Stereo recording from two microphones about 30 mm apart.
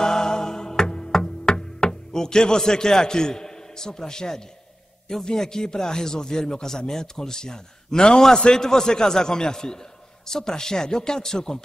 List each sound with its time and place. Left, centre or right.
0.0 s music: left
5.2 s speech: centre